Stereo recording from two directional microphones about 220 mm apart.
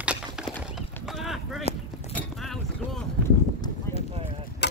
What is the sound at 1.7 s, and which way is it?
Clip-clop, 25° left (ahead or behind).